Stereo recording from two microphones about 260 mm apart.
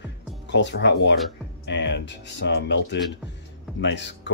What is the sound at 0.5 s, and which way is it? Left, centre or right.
Speech, left.